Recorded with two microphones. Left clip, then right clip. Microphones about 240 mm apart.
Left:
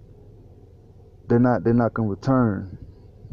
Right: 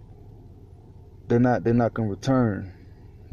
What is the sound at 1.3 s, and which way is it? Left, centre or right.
Speech, centre.